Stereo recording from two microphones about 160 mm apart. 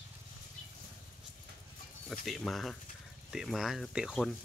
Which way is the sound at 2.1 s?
Centre (ahead or behind).